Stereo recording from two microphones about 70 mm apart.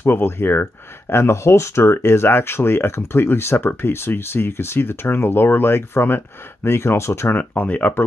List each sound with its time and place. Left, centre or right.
0.0 s speech: left
7.3 s speech: left